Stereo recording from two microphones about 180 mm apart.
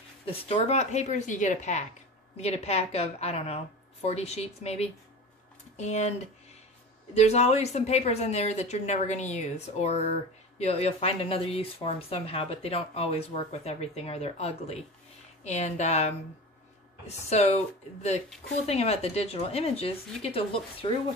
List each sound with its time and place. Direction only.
0.3 s speech: 30° left (ahead or behind)
17.3 s speech: 35° left (ahead or behind)
18.7 s speech: 35° left (ahead or behind)